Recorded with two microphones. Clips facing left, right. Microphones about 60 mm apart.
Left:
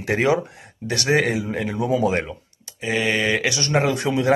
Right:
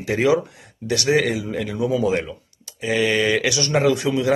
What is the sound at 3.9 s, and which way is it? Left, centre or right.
Speech, left.